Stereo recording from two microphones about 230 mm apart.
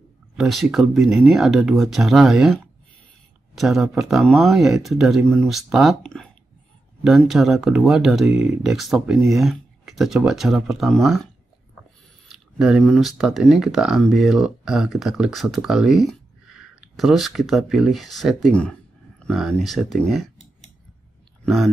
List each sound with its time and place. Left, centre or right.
0.4 s speech: centre
3.5 s speech: centre
12.3 s speech: centre